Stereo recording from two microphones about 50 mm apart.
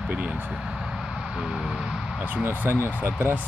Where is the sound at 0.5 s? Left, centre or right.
Centre.